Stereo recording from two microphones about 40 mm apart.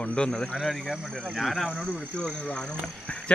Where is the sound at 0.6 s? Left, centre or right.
Centre.